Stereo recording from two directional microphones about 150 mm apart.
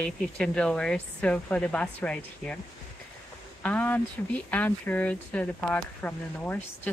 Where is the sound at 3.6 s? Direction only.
10° left (ahead or behind).